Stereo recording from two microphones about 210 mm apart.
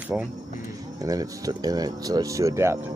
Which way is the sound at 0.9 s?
15° right (ahead or behind).